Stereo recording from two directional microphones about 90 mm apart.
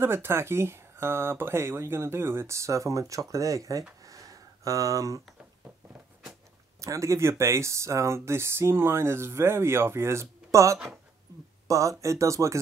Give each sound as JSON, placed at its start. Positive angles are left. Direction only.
{"t": 0.0, "sound": "speech", "side_deg": -25}
{"t": 4.0, "sound": "a sound", "side_deg": -40}
{"t": 6.8, "sound": "speech", "side_deg": -35}